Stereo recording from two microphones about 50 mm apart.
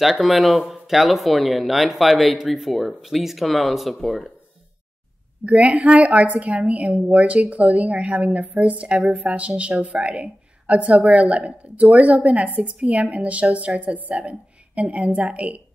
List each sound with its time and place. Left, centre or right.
0.0 s speech: centre
5.4 s a woman's voice: right